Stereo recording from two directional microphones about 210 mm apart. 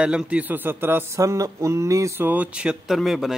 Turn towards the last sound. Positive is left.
turn(degrees=0)  # may be behind; listen again after turning